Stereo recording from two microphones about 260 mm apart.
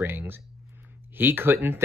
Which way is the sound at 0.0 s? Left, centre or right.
Centre.